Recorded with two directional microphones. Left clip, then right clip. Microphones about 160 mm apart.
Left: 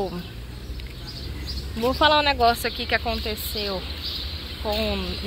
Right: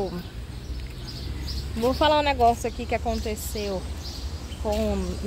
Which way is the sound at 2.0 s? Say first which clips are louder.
Left 2 dB; 20° right (ahead or behind).